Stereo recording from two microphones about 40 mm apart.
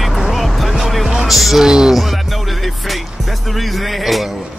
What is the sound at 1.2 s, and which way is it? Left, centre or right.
Speech, centre.